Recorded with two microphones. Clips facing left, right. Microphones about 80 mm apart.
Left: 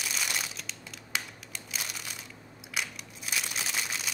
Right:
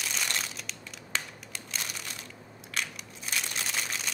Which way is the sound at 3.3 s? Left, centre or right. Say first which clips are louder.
Even; centre.